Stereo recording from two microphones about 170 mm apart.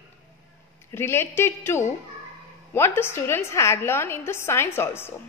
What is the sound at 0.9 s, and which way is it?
A woman's voice, 15° left (ahead or behind).